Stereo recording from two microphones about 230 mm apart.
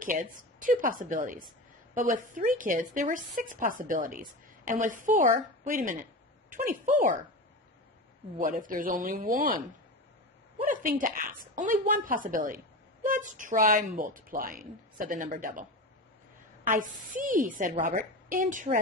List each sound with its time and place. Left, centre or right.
0.0 s a woman's voice: right
8.4 s a woman's voice: right
10.6 s a woman's voice: right
16.6 s a woman's voice: right